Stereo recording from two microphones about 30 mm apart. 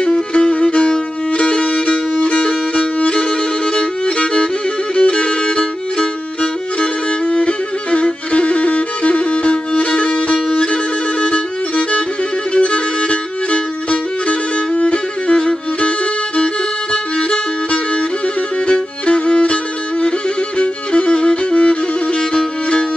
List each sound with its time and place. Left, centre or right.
0.0 s music: left
4.9 s violin: left
12.5 s music: left
15.3 s music: left
16.9 s violin: left
17.6 s music: left